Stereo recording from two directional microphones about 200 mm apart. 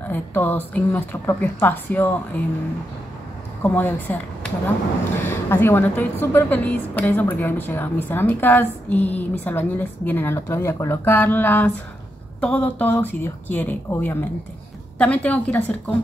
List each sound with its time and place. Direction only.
0.1 s a woman's voice: 10° left (ahead or behind)
3.6 s a woman's voice: 10° left (ahead or behind)